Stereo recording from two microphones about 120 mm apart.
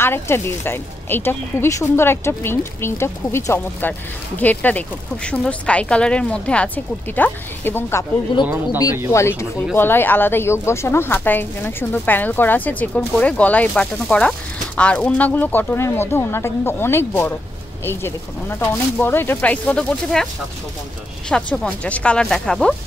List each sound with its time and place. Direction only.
0.0 s speech: 20° left (ahead or behind)
9.8 s speech: 20° left (ahead or behind)
21.3 s speech: 10° left (ahead or behind)